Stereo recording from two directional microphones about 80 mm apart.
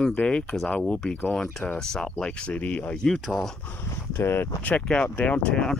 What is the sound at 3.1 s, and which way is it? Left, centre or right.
Speech, centre.